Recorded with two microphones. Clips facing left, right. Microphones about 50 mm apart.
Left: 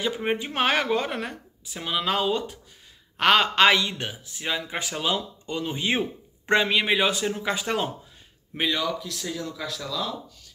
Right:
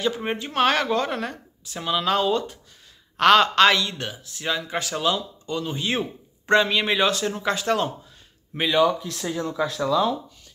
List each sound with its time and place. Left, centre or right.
0.0 s speech: centre
8.7 s speech: right